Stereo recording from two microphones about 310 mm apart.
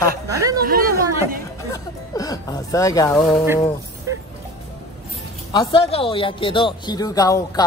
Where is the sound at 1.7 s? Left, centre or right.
Centre.